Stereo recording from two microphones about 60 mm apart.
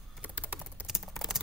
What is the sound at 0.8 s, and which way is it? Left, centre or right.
Typing, centre.